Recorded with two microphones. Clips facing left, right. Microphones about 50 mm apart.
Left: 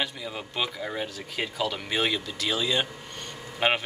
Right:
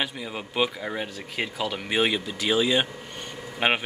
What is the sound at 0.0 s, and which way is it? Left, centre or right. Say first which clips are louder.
Speech: right 1 dB; centre.